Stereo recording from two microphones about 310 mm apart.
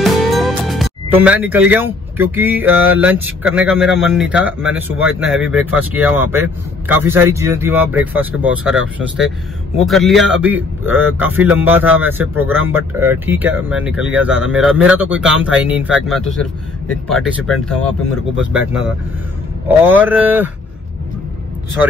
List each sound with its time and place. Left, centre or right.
0.0 s music: centre
2.6 s mantra: right
3.0 s speech: centre
19.8 s speech: centre